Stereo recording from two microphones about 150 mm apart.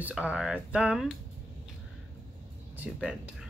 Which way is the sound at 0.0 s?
10° right (ahead or behind).